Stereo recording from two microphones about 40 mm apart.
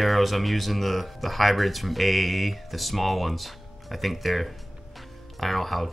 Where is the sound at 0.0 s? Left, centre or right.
Centre.